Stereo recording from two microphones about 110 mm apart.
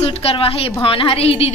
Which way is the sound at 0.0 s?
65° left (ahead or behind).